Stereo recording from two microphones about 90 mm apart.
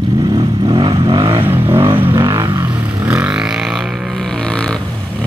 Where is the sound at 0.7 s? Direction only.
60° right (ahead or behind).